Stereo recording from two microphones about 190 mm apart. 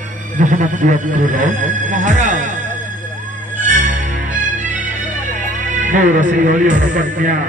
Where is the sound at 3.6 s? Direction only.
40° right (ahead or behind).